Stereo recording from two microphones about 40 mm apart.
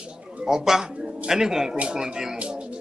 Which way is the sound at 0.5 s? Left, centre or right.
Centre.